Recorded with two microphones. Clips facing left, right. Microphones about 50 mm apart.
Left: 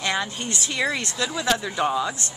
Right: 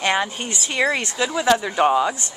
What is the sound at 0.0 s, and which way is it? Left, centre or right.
Speech, right.